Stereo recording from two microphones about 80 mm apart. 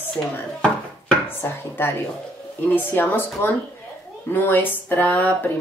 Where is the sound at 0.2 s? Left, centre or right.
Left.